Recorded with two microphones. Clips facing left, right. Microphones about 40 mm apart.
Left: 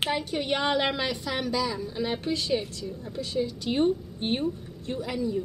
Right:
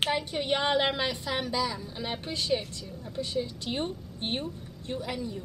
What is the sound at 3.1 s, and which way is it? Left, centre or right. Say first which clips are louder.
Speech: right 2 dB; right.